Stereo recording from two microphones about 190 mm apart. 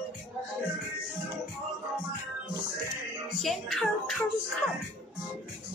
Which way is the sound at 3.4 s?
Centre (ahead or behind).